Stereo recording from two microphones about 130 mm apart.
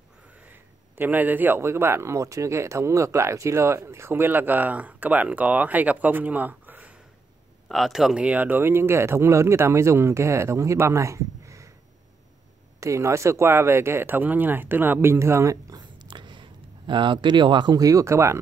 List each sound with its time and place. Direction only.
0.5 s a man's voice: 15° right (ahead or behind)
7.6 s speech: centre (ahead or behind); by 11.7 s 25° right (ahead or behind)
12.8 s speech: 25° right (ahead or behind)